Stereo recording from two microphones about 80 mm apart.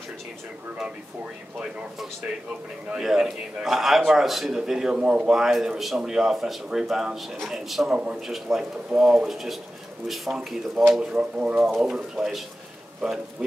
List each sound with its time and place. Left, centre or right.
2.9 s a man's voice: centre
7.9 s a man's voice: centre
11.1 s speech: centre
11.6 s a man's voice: centre